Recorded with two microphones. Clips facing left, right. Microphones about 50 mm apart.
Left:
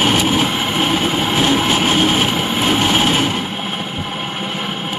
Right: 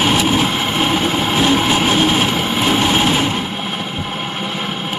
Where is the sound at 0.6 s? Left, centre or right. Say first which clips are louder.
Even; right.